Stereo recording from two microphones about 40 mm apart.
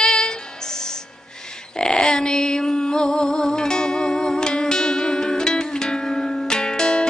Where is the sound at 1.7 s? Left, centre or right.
Centre.